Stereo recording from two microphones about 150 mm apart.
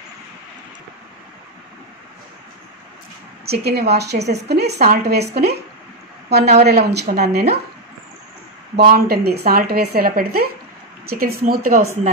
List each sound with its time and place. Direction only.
3.4 s speech: 90° right
6.7 s speech: 90° right
8.7 s speech: 90° right